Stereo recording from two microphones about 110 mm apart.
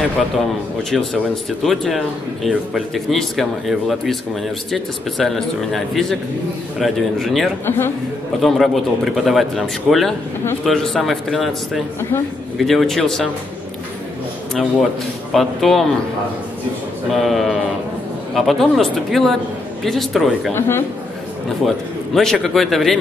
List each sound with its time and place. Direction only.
0.8 s speech: centre (ahead or behind)
7.6 s a man's voice: 20° left (ahead or behind)
8.4 s speech: centre (ahead or behind)
14.5 s speech: 5° left (ahead or behind)
17.1 s speech: centre (ahead or behind)
20.5 s a man's voice: 20° left (ahead or behind)
21.6 s speech: 5° left (ahead or behind)